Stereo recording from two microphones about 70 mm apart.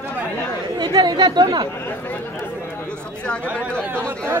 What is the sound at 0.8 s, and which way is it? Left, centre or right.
Speech, right.